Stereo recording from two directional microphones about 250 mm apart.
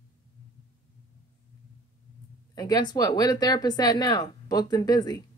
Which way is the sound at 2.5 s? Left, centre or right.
Centre.